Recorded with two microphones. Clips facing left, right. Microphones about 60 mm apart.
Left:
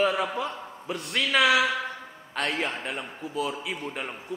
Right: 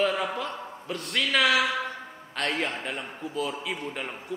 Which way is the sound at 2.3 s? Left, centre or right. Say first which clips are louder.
Even; centre.